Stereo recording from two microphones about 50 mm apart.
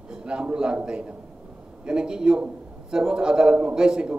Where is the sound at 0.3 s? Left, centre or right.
Centre.